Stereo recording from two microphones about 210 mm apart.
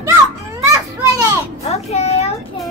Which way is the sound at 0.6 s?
15° right (ahead or behind).